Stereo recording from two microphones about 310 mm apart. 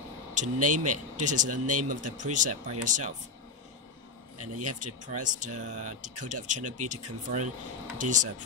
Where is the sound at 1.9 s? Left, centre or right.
Right.